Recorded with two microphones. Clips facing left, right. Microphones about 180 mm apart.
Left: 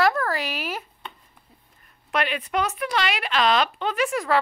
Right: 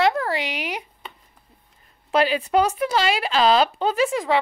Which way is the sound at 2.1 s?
30° right (ahead or behind).